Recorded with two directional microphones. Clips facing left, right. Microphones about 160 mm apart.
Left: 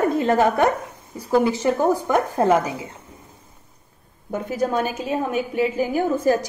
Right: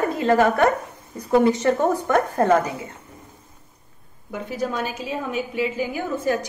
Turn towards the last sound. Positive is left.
turn(degrees=40)  # may be behind; listen again after turning